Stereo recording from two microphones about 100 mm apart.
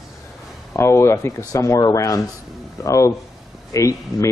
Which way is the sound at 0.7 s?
25° left (ahead or behind).